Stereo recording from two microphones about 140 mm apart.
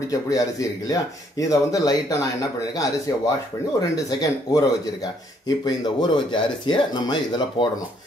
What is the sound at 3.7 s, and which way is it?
A man's voice, 25° left (ahead or behind).